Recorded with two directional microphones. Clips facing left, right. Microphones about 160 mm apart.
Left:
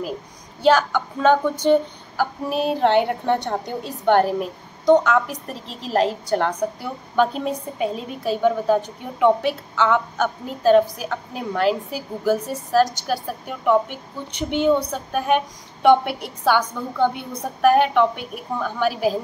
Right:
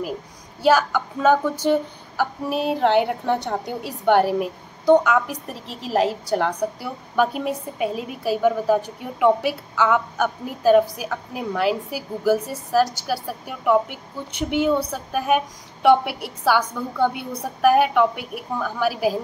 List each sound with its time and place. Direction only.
0.6 s speech: 5° right (ahead or behind)